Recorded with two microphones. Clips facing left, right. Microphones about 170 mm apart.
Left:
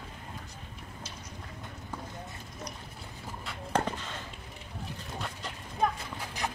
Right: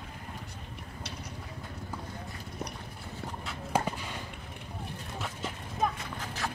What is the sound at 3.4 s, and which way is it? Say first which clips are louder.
Walk: even; 10° right (ahead or behind).